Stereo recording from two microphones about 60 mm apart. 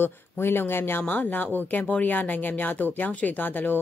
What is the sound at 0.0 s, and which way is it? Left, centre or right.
Speech, left.